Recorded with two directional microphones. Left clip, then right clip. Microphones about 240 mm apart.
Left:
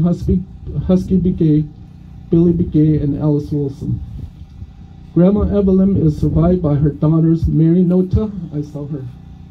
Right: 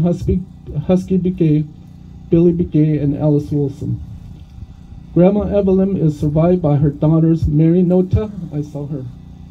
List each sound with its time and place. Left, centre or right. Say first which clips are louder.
0.0 s a man's voice: right 1 dB; right
5.1 s a man's voice: right 1 dB; right